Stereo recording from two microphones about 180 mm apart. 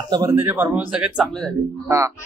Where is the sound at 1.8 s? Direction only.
15° right (ahead or behind).